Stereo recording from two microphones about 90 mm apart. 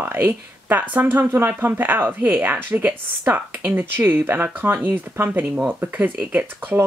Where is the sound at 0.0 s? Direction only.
20° right (ahead or behind).